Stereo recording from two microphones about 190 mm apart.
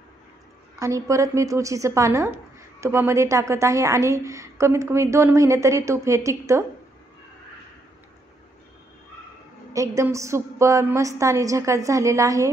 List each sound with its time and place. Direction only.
0.7 s a woman's voice: 15° right (ahead or behind)
9.7 s a woman's voice: 15° right (ahead or behind)